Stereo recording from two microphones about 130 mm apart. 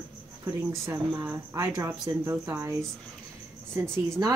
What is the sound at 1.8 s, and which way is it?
Speech, 20° right (ahead or behind).